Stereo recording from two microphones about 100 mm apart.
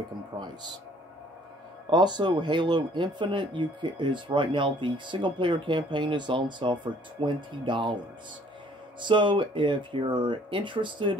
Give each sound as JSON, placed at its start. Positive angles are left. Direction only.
{"t": 1.9, "sound": "speech", "side_deg": -50}
{"t": 9.0, "sound": "speech", "side_deg": -55}